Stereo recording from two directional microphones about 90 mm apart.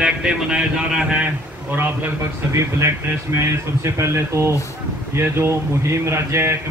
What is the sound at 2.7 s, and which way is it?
A man's voice, 30° right (ahead or behind).